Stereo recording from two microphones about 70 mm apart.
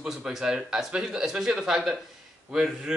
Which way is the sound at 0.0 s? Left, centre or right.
Centre.